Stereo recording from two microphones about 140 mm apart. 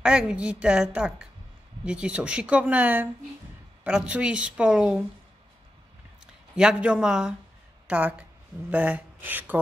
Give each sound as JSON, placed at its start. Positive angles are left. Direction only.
{"t": 0.0, "sound": "speech", "side_deg": -5}
{"t": 6.5, "sound": "a man's voice", "side_deg": -5}
{"t": 8.6, "sound": "speech", "side_deg": -10}